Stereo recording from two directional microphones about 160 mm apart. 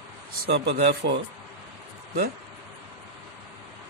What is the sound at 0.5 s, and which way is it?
Speech, 90° right.